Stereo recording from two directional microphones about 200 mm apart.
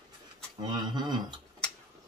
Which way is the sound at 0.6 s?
20° right (ahead or behind).